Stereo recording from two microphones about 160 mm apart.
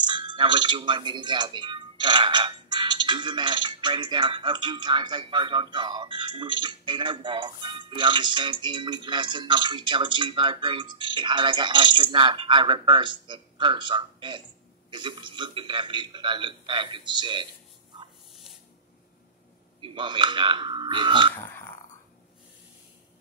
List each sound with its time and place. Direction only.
0.0 s a man's voice: 30° right (ahead or behind)
18.3 s a sound: centre (ahead or behind)
19.8 s speech: 30° right (ahead or behind)
21.4 s speech: 15° left (ahead or behind)